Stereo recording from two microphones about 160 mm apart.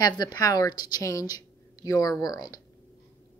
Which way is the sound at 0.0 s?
25° left (ahead or behind).